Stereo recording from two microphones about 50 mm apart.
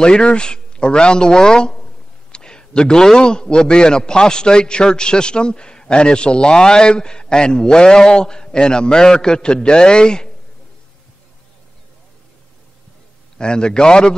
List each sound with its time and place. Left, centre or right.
0.0 s a man's voice: centre
13.4 s a man's voice: centre